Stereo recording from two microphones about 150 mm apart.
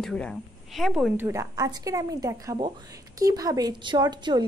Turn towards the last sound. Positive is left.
turn(degrees=-30)  # may be behind; listen again after turning